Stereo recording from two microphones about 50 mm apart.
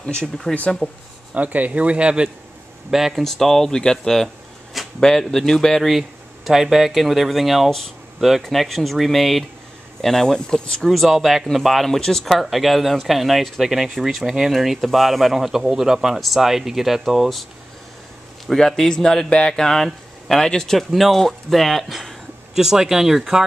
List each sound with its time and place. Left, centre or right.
0.2 s speech: centre
1.3 s speech: right
2.9 s speech: centre
3.3 s speech: centre
10.9 s speech: centre
18.5 s speech: centre
20.9 s speech: centre
22.6 s speech: centre